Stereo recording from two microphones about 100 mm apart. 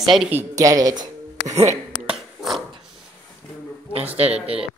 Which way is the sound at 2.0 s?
5° right (ahead or behind).